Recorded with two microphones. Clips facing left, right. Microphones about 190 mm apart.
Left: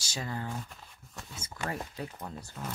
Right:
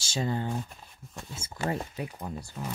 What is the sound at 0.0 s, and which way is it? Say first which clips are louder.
Speech: right 7 dB; 25° right (ahead or behind).